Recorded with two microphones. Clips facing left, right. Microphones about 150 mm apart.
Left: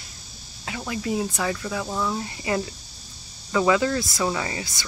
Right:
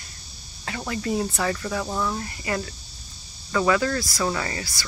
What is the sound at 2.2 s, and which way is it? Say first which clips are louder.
Cricket: left 2 dB; 20° left (ahead or behind).